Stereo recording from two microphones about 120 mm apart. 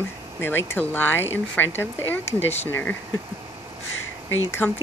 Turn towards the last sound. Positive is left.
turn(degrees=10)  # may be behind; listen again after turning